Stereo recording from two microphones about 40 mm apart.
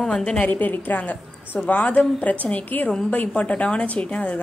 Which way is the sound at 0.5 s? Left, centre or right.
Left.